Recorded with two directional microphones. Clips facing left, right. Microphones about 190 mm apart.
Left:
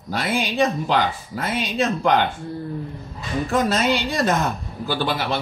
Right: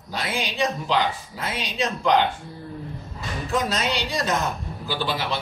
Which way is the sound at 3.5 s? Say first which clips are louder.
Left 5 dB; 50° left (ahead or behind).